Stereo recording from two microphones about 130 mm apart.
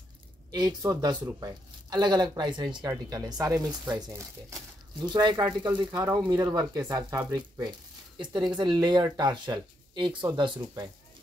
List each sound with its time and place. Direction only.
0.5 s speech: 30° right (ahead or behind)
5.0 s speech: 35° right (ahead or behind)
7.1 s speech: 20° right (ahead or behind)
7.3 s speech: 30° right (ahead or behind)